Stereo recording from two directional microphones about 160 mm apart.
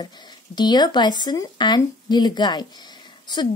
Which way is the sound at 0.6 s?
25° left (ahead or behind).